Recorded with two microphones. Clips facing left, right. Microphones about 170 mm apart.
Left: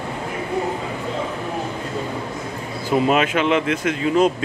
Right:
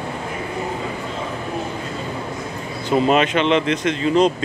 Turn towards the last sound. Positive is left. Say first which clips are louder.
# right 1 dB
turn(degrees=5)  # may be behind; listen again after turning